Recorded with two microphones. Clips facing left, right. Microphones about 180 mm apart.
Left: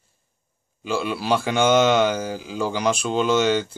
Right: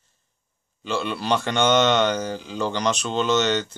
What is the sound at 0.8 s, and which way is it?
Speech, 5° left (ahead or behind).